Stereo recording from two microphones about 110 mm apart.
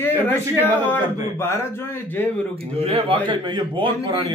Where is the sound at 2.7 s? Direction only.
60° right (ahead or behind); by 4.2 s 40° right (ahead or behind).